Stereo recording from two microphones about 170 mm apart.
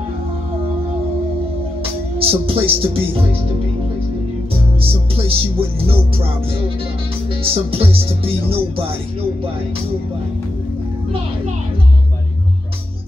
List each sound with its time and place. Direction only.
2.1 s speech: 35° right (ahead or behind)
4.8 s speech: 35° right (ahead or behind)
7.4 s speech: 35° right (ahead or behind)